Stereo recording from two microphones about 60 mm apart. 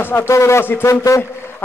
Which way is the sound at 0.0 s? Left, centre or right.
Left.